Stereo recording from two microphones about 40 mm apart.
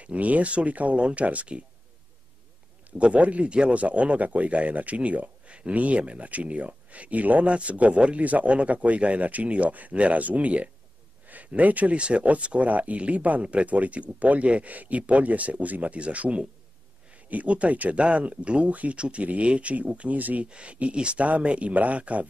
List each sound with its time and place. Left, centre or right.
0.0 s speech: right
3.0 s speech: right
12.0 s speech: right
20.4 s speech: right